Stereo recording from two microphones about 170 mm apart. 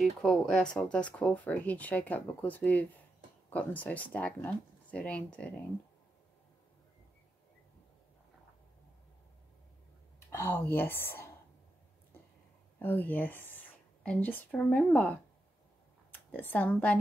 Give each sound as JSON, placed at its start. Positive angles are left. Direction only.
{"t": 0.0, "sound": "speech", "side_deg": 5}
{"t": 10.3, "sound": "speech", "side_deg": 15}
{"t": 12.7, "sound": "speech", "side_deg": 10}